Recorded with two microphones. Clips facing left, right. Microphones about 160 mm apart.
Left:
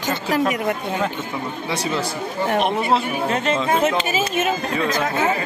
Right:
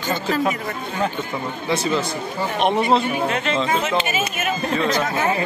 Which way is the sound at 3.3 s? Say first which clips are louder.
Left 2 dB; 45° left (ahead or behind).